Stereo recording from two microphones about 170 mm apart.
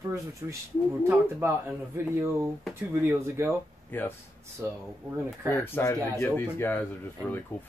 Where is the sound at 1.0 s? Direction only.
15° right (ahead or behind).